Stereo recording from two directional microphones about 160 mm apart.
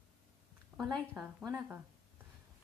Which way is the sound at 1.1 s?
10° right (ahead or behind).